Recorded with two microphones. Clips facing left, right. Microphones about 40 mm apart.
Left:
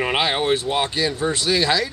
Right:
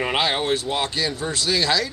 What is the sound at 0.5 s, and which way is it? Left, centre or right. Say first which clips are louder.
Speech: left 2 dB; left.